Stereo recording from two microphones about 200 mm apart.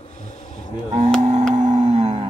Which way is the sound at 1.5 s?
35° right (ahead or behind).